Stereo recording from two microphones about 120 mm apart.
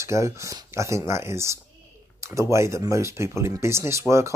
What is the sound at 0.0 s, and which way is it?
Speech, 25° right (ahead or behind).